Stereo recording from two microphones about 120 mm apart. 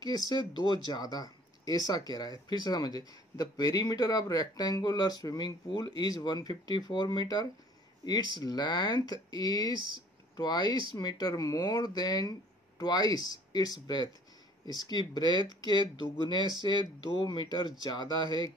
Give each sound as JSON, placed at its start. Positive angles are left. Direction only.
{"t": 0.0, "sound": "speech", "side_deg": 35}